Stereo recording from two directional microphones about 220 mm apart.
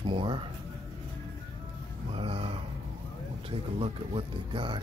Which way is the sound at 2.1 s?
25° right (ahead or behind).